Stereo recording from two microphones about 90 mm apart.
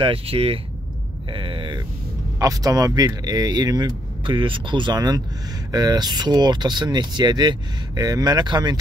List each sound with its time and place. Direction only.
0.0 s speech: 90° right
1.3 s speech: 70° right (ahead or behind)
2.3 s speech: 40° right (ahead or behind)
4.4 s speech: 65° right (ahead or behind)